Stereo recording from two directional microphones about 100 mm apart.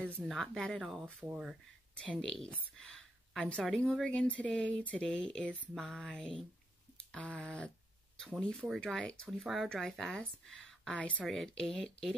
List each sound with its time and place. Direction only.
0.3 s speech: 5° left (ahead or behind); by 1.5 s 15° right (ahead or behind)
2.0 s speech: 10° left (ahead or behind)
2.8 s a sound: 10° left (ahead or behind)
3.6 s speech: 5° left (ahead or behind)